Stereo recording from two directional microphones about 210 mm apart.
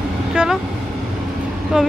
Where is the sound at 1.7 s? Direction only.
5° right (ahead or behind).